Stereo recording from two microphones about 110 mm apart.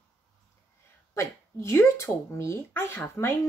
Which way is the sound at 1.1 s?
25° left (ahead or behind).